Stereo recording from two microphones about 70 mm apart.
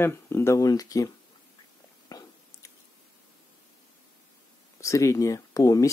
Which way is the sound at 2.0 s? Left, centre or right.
Left.